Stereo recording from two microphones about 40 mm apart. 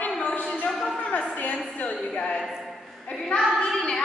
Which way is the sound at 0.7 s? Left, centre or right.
Centre.